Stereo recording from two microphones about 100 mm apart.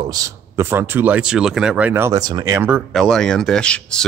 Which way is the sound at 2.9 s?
5° left (ahead or behind).